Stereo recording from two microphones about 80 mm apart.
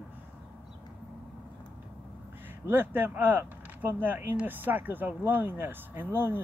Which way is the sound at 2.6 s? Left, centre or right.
Right.